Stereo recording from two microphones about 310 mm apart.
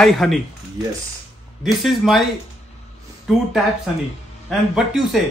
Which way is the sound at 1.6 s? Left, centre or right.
Centre.